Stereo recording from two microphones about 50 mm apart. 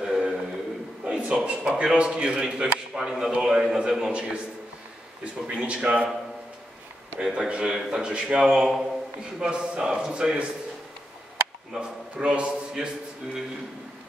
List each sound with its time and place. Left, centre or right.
0.0 s a sound: centre
1.0 s a man's voice: right
4.1 s speech: right
7.2 s a man's voice: centre
11.7 s speech: centre